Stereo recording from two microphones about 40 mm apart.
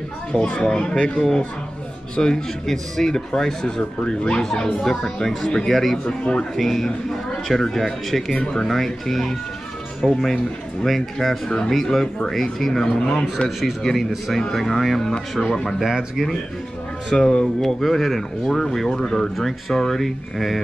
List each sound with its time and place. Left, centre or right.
0.4 s speech: left
5.7 s speech: centre
6.0 s speech: left
6.5 s speech: centre
10.0 s speech: centre
10.9 s speech: centre
11.4 s speech: centre
11.7 s speech: centre
15.8 s speech: centre
17.3 s speech: centre